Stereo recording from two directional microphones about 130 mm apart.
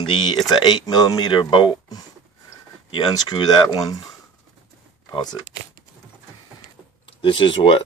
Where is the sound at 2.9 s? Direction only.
30° left (ahead or behind).